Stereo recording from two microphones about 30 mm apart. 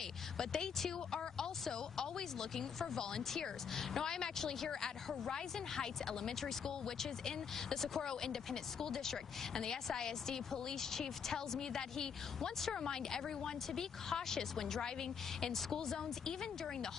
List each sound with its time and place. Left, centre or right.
0.4 s speech: centre